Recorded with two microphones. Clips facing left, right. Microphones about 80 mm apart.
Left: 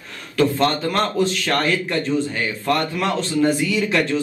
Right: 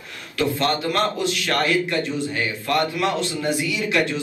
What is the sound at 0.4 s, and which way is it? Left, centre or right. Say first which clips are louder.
A man's voice: left 4 dB; left.